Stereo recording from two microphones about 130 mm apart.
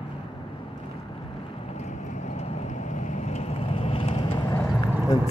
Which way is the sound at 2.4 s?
65° left (ahead or behind).